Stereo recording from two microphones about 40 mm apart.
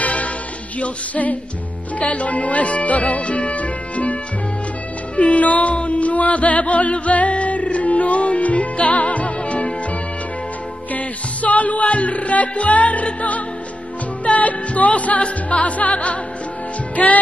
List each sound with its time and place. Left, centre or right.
0.0 s music: left
0.7 s speech: left
5.1 s music: left
10.9 s music: left